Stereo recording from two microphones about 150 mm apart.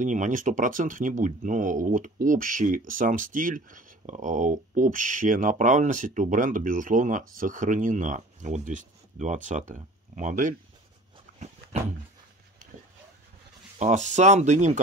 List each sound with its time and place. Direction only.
0.0 s speech: 55° right (ahead or behind)
11.3 s dog: 45° right (ahead or behind)
13.7 s speech: 55° right (ahead or behind)